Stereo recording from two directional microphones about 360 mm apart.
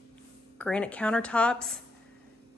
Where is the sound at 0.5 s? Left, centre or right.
Centre.